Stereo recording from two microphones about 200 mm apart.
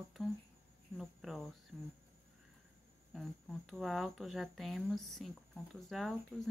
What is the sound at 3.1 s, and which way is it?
Speech, centre (ahead or behind).